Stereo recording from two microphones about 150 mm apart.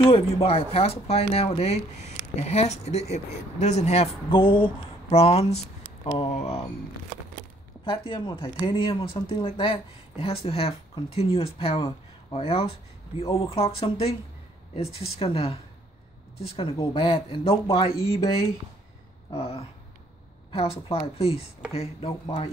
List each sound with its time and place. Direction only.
0.0 s speech: 40° left (ahead or behind)
7.8 s speech: 35° left (ahead or behind)
19.3 s speech: 40° left (ahead or behind)